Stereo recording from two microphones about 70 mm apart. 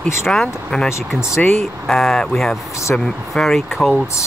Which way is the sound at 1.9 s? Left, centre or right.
Centre.